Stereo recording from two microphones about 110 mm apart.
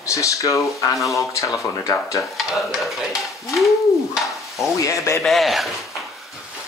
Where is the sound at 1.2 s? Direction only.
30° left (ahead or behind).